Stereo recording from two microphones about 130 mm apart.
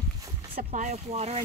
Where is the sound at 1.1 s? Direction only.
50° right (ahead or behind).